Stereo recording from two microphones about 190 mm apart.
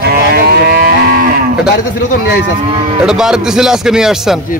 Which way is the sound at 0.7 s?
50° right (ahead or behind).